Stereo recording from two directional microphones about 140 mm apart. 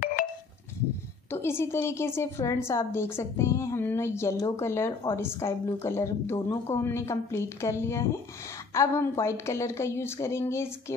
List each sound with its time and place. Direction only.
1.3 s a woman's voice: 20° left (ahead or behind)